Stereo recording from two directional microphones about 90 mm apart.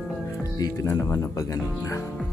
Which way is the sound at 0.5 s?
40° left (ahead or behind).